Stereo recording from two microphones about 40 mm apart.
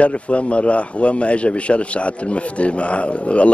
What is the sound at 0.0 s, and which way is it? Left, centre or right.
Speech, left.